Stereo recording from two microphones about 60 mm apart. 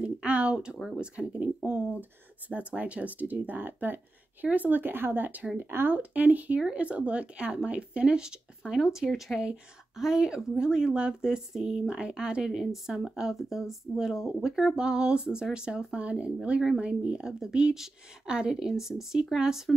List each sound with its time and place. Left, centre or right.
0.0 s a sound: right
0.8 s speech: centre
1.1 s speech: right